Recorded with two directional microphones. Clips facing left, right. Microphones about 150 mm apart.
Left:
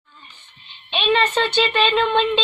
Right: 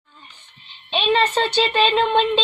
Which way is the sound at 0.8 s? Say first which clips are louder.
Even; 35° right (ahead or behind).